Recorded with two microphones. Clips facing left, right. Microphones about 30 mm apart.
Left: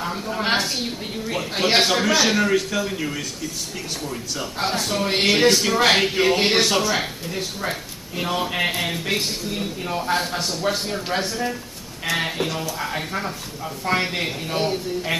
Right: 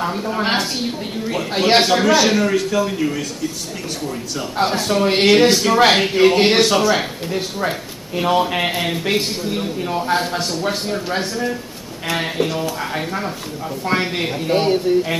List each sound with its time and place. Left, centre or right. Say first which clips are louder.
0.0 s a man's voice: right 4 dB; centre
1.7 s a man's voice: right 5 dB; centre
4.4 s a man's voice: right 5 dB; centre
14.5 s speech: right 8 dB; right